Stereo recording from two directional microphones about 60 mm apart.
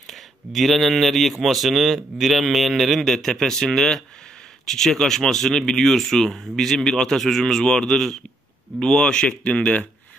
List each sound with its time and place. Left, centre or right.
0.0 s a man's voice: centre